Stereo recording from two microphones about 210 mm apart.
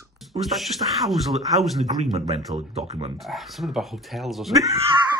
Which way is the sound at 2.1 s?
30° right (ahead or behind).